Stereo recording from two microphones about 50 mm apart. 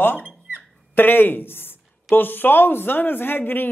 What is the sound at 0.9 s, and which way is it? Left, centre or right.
Speech, left.